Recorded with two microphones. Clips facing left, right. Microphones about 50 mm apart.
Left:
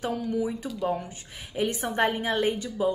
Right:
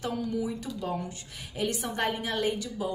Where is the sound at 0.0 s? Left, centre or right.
Left.